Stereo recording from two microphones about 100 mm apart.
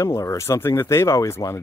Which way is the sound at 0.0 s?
30° left (ahead or behind).